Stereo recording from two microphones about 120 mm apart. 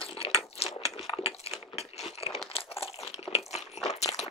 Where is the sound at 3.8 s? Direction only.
70° left (ahead or behind).